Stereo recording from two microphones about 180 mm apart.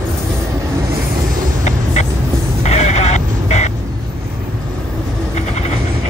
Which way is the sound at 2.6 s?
40° left (ahead or behind).